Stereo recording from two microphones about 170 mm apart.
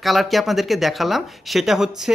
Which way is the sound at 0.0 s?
Centre (ahead or behind).